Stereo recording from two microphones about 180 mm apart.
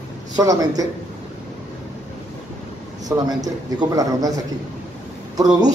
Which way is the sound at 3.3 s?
20° right (ahead or behind).